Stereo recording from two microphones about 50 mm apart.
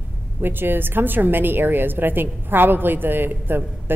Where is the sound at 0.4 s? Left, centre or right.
Right.